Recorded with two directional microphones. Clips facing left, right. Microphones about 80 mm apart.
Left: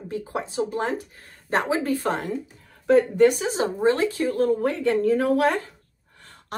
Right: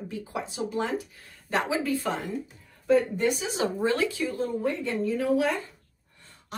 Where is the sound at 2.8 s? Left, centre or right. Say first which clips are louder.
Left 6 dB; left.